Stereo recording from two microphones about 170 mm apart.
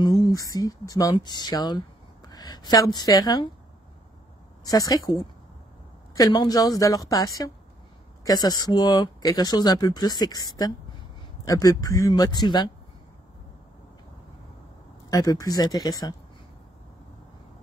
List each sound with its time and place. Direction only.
0.0 s speech: 25° left (ahead or behind)
4.6 s speech: 20° left (ahead or behind)
15.0 s speech: 20° left (ahead or behind)